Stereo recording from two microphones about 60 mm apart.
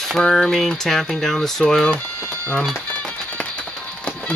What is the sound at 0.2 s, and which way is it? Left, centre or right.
Speech, centre.